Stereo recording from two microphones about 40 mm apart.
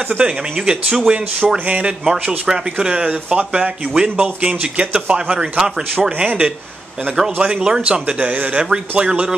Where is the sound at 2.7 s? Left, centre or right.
Right.